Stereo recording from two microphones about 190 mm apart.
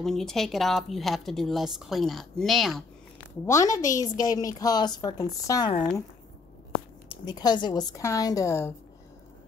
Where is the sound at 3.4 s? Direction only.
15° left (ahead or behind).